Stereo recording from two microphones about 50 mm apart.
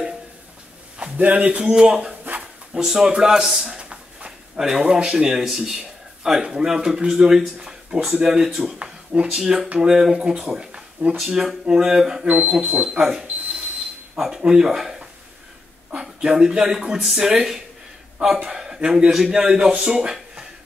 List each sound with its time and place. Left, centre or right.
1.1 s speech: right
1.6 s speech: centre
3.7 s a sound: centre
4.6 s speech: centre
9.7 s speech: centre
12.3 s speech: right
13.0 s speech: centre